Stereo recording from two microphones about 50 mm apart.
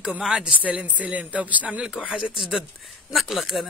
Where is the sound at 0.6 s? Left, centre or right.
Right.